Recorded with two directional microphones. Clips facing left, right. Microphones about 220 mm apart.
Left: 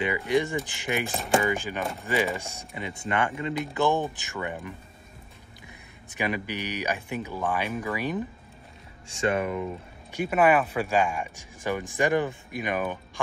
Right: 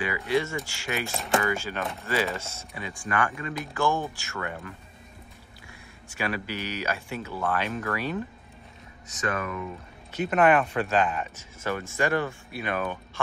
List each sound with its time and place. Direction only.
0.3 s speech: 15° left (ahead or behind)
1.1 s speech: centre (ahead or behind)
1.4 s speech: 15° left (ahead or behind)
9.0 s speech: 30° left (ahead or behind)
10.1 s speech: 10° left (ahead or behind)